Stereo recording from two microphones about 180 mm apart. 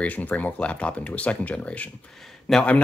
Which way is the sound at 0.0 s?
10° left (ahead or behind).